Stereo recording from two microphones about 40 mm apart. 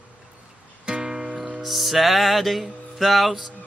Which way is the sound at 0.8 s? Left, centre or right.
Centre.